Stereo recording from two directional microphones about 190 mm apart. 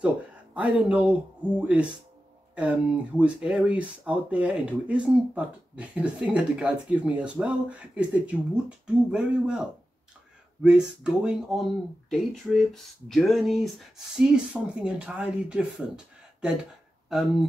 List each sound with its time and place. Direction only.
0.6 s speech: 5° right (ahead or behind)
17.1 s speech: centre (ahead or behind)